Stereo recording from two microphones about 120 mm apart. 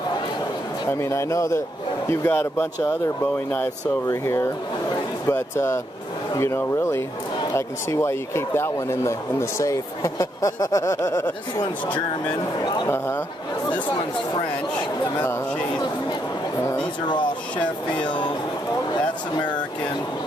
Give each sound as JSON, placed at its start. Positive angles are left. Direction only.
{"t": 0.8, "sound": "speech", "side_deg": 25}
{"t": 4.1, "sound": "speech", "side_deg": 25}
{"t": 12.3, "sound": "speech", "side_deg": 40}
{"t": 12.8, "sound": "speech", "side_deg": 20}
{"t": 18.0, "sound": "speech", "side_deg": 40}